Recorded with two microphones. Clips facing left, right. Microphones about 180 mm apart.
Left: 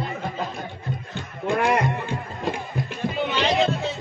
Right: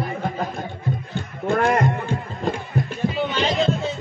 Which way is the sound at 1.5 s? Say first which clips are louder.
Right 2 dB; 50° right (ahead or behind).